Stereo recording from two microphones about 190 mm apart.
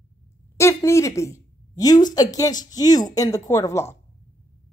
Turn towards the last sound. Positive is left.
turn(degrees=15)  # may be behind; listen again after turning